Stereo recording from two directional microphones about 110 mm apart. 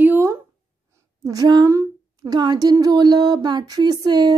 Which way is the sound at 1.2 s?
35° right (ahead or behind).